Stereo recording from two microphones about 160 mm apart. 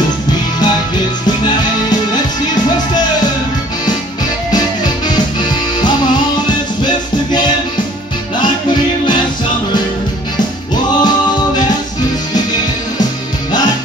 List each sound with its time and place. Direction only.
4.5 s music: 25° left (ahead or behind)
11.0 s music: 25° left (ahead or behind)